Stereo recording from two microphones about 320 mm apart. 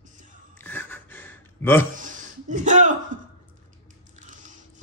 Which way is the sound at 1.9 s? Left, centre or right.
Right.